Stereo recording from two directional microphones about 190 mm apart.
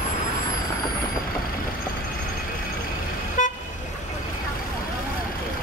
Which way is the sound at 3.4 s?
40° left (ahead or behind).